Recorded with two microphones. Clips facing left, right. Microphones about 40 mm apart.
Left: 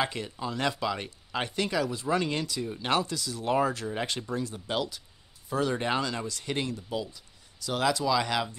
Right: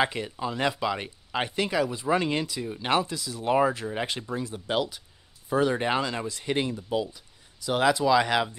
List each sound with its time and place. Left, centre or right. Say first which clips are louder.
0.0 s speech: right 4 dB; centre